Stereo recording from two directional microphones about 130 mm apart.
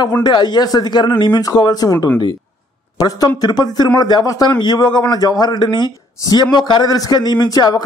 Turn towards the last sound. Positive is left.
turn(degrees=30)  # may be behind; listen again after turning